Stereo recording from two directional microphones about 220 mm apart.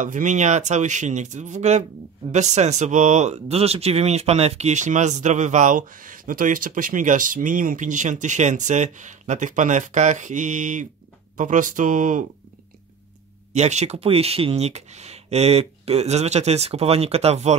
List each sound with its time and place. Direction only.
0.0 s speech: 35° right (ahead or behind)
13.5 s speech: 30° right (ahead or behind)